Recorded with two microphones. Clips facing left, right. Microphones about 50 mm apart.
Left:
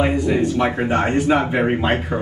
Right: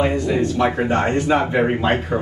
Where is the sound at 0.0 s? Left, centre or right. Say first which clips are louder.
Left 1 dB; centre.